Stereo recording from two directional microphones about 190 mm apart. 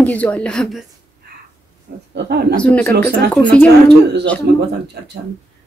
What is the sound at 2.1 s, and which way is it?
Speech, 55° right (ahead or behind).